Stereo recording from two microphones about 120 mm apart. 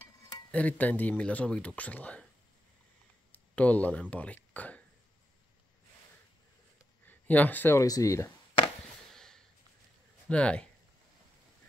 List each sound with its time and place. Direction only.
0.5 s speech: 10° left (ahead or behind)
3.5 s speech: 10° left (ahead or behind)
7.1 s speech: 15° left (ahead or behind)
7.8 s speech: 30° left (ahead or behind)
9.1 s snort: 5° left (ahead or behind)
10.2 s speech: 10° left (ahead or behind)